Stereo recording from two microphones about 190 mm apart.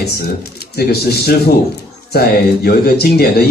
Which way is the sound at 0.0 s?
55° left (ahead or behind).